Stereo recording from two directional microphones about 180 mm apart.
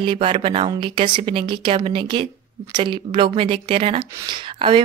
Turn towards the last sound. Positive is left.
turn(degrees=-30)  # may be behind; listen again after turning